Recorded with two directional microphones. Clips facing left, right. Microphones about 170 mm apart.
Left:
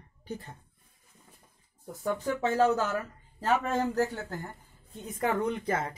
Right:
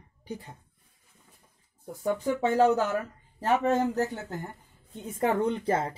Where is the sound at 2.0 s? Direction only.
15° right (ahead or behind).